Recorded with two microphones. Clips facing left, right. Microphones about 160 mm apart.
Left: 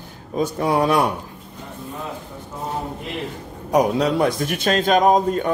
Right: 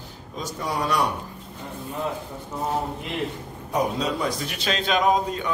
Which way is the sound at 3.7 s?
65° left (ahead or behind).